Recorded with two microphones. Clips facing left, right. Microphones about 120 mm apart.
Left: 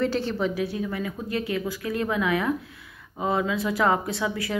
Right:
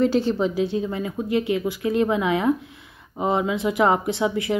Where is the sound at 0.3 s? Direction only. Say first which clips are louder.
Right 5 dB; 30° right (ahead or behind).